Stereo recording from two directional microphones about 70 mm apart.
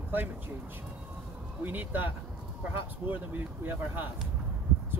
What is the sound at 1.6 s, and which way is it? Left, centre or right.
Speech, right.